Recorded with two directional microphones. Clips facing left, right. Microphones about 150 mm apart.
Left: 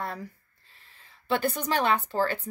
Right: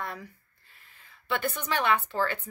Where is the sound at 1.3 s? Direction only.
35° left (ahead or behind).